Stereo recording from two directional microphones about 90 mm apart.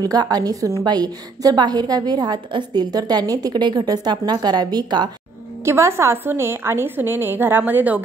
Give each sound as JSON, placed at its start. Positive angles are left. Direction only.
{"t": 0.0, "sound": "a woman's voice", "side_deg": -45}
{"t": 5.7, "sound": "a woman's voice", "side_deg": -30}